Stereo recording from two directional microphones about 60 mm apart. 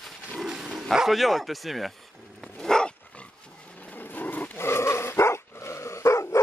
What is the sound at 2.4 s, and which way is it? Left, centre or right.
Dog, centre.